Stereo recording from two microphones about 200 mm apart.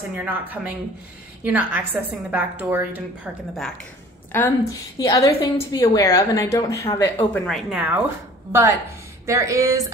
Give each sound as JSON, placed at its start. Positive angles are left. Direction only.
{"t": 0.2, "sound": "speech", "side_deg": -10}
{"t": 4.3, "sound": "a woman's voice", "side_deg": 10}
{"t": 7.5, "sound": "speech", "side_deg": -5}